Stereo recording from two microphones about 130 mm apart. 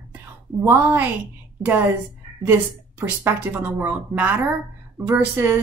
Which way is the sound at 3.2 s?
15° right (ahead or behind).